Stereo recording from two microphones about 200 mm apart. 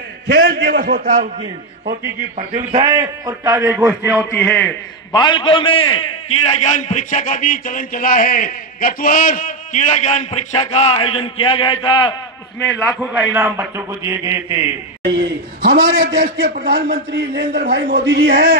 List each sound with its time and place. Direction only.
0.3 s a sound: 55° right (ahead or behind)
2.3 s a man's voice: 30° right (ahead or behind); by 4.3 s 5° right (ahead or behind)
4.3 s a man's voice: 10° left (ahead or behind)
5.1 s a man's voice: 25° left (ahead or behind)
12.5 s a man's voice: 10° left (ahead or behind)
13.0 s a man's voice: 5° right (ahead or behind)
15.1 s a man's voice: 55° right (ahead or behind)
16.2 s a man's voice: 45° right (ahead or behind)